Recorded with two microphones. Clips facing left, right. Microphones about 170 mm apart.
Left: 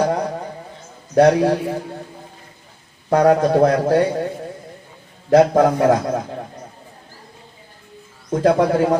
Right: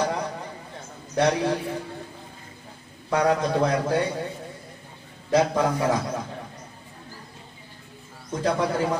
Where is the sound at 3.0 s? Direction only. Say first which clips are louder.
Left 8 dB; 50° left (ahead or behind).